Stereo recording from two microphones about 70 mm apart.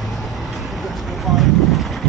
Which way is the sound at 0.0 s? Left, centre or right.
Centre.